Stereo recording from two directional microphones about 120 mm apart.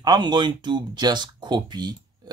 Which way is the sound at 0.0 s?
35° right (ahead or behind).